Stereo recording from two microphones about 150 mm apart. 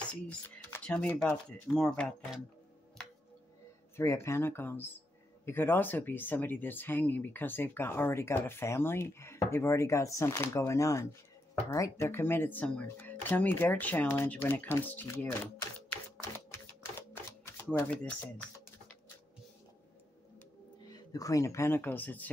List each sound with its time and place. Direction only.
0.1 s speech: 10° left (ahead or behind)
3.0 s music: 5° left (ahead or behind)
3.9 s speech: 20° left (ahead or behind)
17.6 s speech: 10° left (ahead or behind)
20.8 s speech: 25° left (ahead or behind)